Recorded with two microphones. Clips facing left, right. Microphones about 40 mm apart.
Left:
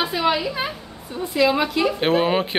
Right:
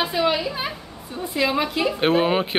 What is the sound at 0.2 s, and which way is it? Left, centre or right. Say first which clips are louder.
Speech: left 1 dB; centre.